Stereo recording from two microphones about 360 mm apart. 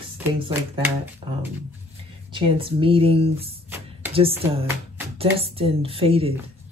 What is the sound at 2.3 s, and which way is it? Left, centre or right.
Speech, centre.